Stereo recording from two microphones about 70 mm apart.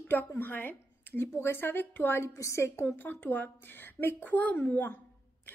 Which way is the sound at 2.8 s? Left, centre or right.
Left.